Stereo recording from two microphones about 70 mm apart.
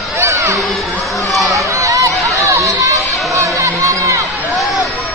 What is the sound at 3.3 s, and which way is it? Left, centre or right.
Crowd, right.